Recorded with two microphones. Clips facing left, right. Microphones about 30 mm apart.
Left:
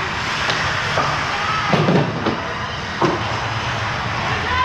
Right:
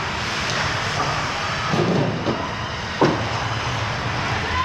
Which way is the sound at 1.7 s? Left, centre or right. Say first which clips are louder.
Left 4 dB; left.